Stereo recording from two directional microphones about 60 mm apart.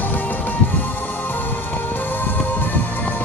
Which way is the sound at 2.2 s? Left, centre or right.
Left.